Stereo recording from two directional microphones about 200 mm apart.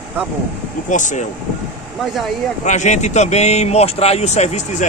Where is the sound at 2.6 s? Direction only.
35° left (ahead or behind).